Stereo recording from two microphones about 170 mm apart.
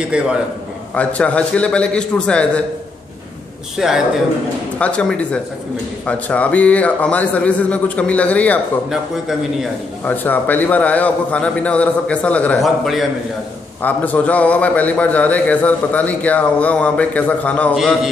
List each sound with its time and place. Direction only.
0.0 s a man's voice: 5° right (ahead or behind)
0.9 s a man's voice: 5° left (ahead or behind)
3.7 s a man's voice: 5° right (ahead or behind)
10.0 s a man's voice: 10° left (ahead or behind)